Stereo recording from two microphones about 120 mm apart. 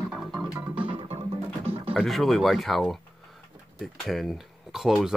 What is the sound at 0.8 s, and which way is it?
Music, 55° right (ahead or behind).